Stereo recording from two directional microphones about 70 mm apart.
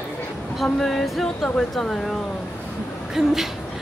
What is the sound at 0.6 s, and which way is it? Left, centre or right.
Speech, centre.